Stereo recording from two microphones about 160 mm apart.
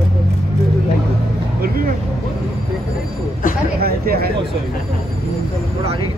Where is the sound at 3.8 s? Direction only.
70° right (ahead or behind).